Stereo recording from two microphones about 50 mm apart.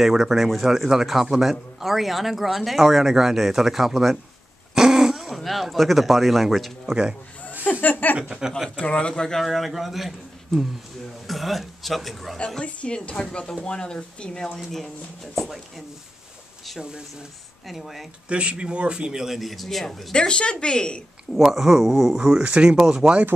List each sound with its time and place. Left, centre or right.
0.0 s speech: centre
6.9 s speech: centre
7.8 s a sound: left
8.2 s speech: centre
8.6 s speech: left
9.4 s speech: centre
12.6 s speech: left
14.6 s speech: centre
17.6 s speech: centre
18.3 s speech: right
19.2 s speech: centre
20.2 s a woman's voice: centre
21.3 s speech: centre
22.4 s speech: right